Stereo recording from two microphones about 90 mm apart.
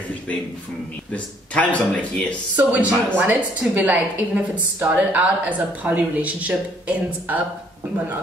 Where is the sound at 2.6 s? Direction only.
15° right (ahead or behind).